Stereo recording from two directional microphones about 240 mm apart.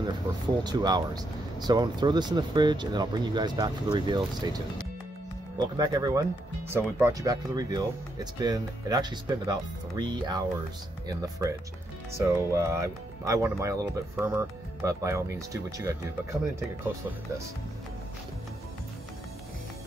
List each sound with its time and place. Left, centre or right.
0.7 s speech: centre
5.8 s speech: centre